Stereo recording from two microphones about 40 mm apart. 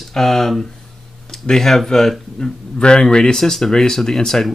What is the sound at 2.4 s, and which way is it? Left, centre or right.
Speech, left.